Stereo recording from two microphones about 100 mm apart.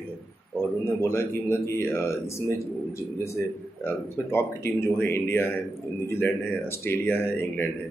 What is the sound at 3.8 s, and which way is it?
A man's voice, 25° left (ahead or behind).